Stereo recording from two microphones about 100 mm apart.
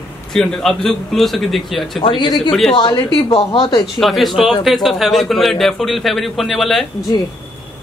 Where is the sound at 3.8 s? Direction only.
Centre (ahead or behind).